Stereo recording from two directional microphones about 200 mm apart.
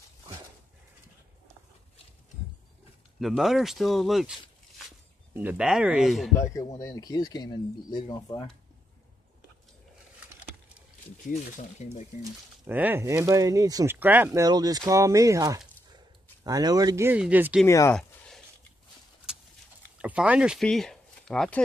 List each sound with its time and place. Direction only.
3.2 s speech: centre (ahead or behind)
5.3 s speech: 10° right (ahead or behind)
6.3 s speech: 15° left (ahead or behind)
11.2 s speech: 35° left (ahead or behind)
12.2 s speech: 10° right (ahead or behind)
17.6 s speech: 15° left (ahead or behind)
17.9 s a sound: 5° left (ahead or behind)
20.0 s speech: 5° right (ahead or behind)